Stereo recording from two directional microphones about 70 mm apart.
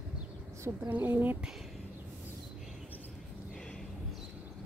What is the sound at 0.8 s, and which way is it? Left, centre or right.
Speech, right.